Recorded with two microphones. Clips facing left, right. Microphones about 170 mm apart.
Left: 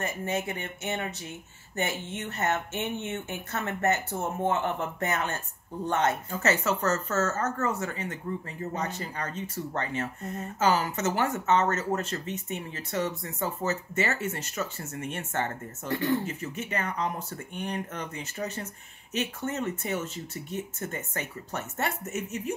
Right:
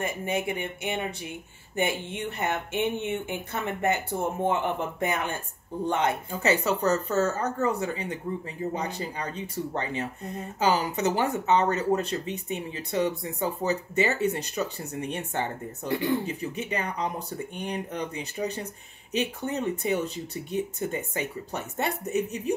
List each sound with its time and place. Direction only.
0.0 s speech: 15° right (ahead or behind)